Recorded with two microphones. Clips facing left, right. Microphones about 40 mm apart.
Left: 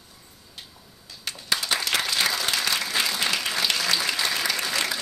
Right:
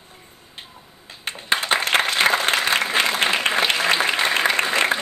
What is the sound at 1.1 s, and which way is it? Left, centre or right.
Applause, right.